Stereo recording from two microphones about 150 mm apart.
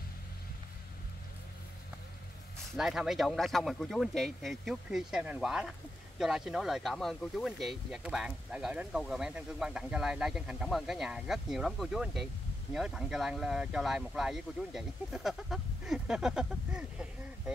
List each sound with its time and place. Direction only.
2.7 s speech: 5° right (ahead or behind)